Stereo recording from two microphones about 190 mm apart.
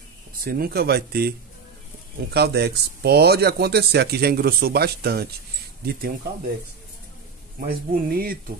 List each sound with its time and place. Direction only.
0.3 s speech: 50° right (ahead or behind)
2.3 s speech: 60° right (ahead or behind)
7.6 s speech: 50° right (ahead or behind)